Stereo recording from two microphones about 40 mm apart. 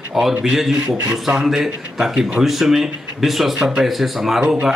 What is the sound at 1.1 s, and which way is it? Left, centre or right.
Speech, right.